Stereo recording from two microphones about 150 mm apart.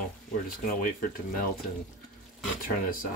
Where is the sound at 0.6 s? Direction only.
65° left (ahead or behind).